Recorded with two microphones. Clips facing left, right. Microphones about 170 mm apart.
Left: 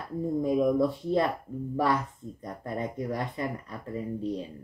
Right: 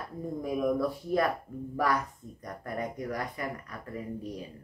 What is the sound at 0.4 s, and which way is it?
Speech, 25° left (ahead or behind).